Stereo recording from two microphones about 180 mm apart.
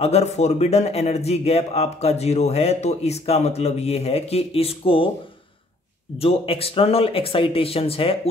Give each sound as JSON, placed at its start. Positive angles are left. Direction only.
{"t": 0.0, "sound": "a man's voice", "side_deg": 35}
{"t": 6.1, "sound": "a man's voice", "side_deg": 30}